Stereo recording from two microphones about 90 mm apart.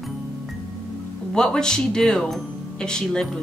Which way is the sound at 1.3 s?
5° left (ahead or behind).